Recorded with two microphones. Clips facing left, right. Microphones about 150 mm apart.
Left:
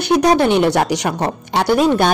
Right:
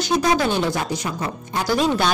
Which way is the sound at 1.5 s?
65° left (ahead or behind).